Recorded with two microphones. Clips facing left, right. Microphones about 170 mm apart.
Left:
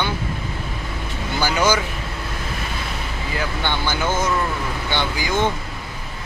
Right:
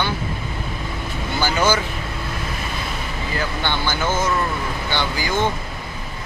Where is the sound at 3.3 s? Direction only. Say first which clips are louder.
Even; 15° left (ahead or behind).